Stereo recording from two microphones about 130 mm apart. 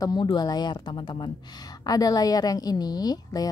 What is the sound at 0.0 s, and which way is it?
A woman's voice, 35° left (ahead or behind).